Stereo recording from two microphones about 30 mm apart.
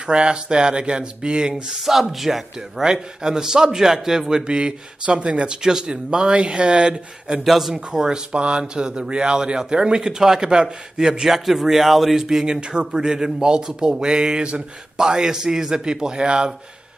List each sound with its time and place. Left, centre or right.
0.0 s speech: right
1.9 s speech: centre
2.8 s speech: right
4.5 s speech: right
5.6 s speech: centre
5.9 s speech: right
7.4 s speech: centre
7.7 s speech: right
8.3 s speech: right
10.4 s speech: right
11.2 s speech: centre
12.2 s speech: centre